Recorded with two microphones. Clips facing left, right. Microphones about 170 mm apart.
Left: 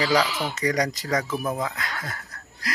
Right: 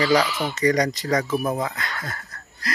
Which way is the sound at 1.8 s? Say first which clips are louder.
Right 1 dB; 5° left (ahead or behind).